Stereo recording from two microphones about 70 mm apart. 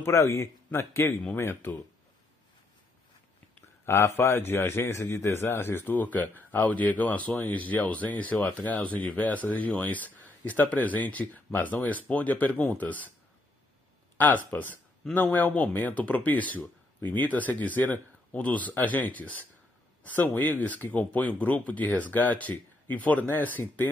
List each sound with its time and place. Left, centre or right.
0.0 s speech: left
3.8 s a man's voice: left
14.1 s a man's voice: left